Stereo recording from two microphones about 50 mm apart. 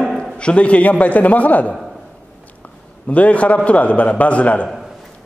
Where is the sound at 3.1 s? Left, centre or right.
Left.